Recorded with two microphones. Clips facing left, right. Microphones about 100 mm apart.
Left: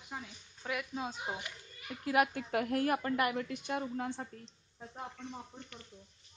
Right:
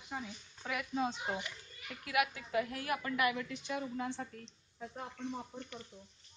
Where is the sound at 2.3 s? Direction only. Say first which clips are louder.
Left 3 dB; 55° left (ahead or behind).